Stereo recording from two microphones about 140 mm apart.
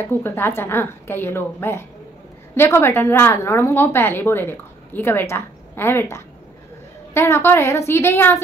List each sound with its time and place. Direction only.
0.0 s a woman's voice: 15° left (ahead or behind)